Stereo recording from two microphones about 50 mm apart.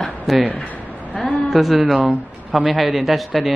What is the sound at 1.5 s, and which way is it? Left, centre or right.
Speech, centre.